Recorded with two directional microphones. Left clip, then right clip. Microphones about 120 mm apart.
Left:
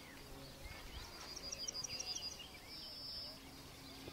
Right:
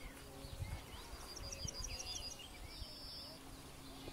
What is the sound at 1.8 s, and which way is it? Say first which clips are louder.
Chirp: left 2 dB; 40° left (ahead or behind).